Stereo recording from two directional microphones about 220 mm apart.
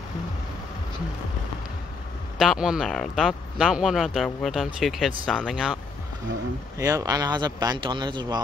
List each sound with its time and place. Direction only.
2.3 s speech: centre (ahead or behind)
6.8 s speech: 15° right (ahead or behind)